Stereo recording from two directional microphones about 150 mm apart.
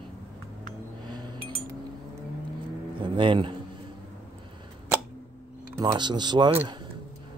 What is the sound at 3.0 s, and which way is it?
Speech, 35° right (ahead or behind).